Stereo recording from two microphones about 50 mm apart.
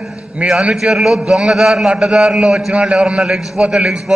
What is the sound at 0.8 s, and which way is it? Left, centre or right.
A man's voice, centre.